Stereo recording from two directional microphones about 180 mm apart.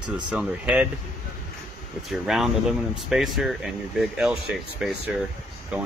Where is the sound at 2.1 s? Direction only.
Centre (ahead or behind).